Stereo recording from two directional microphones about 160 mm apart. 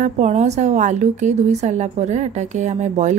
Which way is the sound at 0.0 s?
45° right (ahead or behind).